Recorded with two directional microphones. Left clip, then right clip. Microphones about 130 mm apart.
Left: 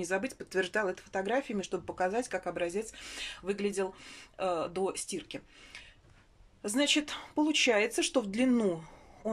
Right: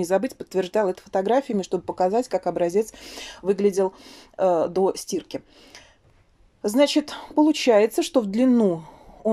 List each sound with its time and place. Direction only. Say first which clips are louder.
0.0 s speech: right 11 dB; 40° right (ahead or behind)